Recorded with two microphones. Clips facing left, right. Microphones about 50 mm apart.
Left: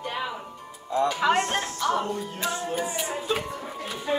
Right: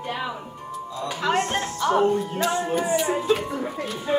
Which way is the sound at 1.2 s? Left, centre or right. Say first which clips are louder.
Right 4 dB; centre.